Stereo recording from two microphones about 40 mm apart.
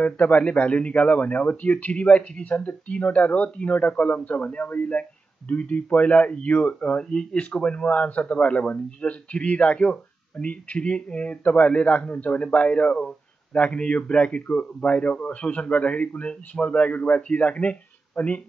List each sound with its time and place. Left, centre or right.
0.0 s a man's voice: left
7.1 s a man's voice: left